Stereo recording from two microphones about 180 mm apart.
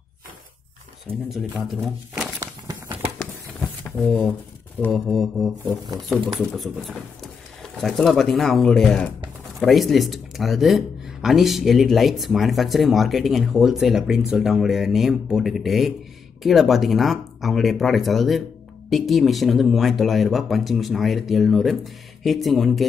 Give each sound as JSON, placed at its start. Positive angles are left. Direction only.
{"t": 1.3, "sound": "speech", "side_deg": 0}
{"t": 2.4, "sound": "crumpling", "side_deg": -20}
{"t": 3.8, "sound": "speech", "side_deg": 0}